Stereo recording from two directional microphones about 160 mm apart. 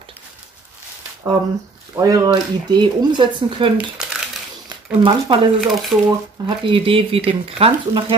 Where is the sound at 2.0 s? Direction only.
20° right (ahead or behind).